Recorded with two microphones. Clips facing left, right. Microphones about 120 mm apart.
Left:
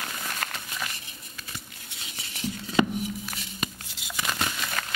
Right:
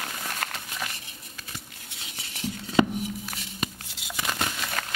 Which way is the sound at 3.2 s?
50° right (ahead or behind).